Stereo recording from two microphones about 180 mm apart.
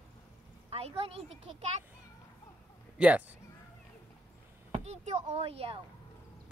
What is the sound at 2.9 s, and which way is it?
Speech, 5° right (ahead or behind).